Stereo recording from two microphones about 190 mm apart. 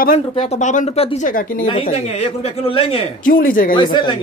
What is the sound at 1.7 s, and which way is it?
Speech, 30° left (ahead or behind).